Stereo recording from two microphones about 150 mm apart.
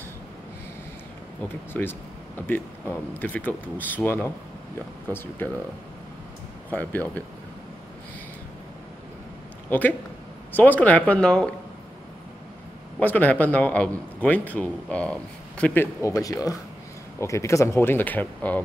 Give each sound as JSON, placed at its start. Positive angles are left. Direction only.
{"t": 1.7, "sound": "a man's voice", "side_deg": 15}
{"t": 6.7, "sound": "a man's voice", "side_deg": 10}
{"t": 9.7, "sound": "a man's voice", "side_deg": 10}
{"t": 13.0, "sound": "a man's voice", "side_deg": 10}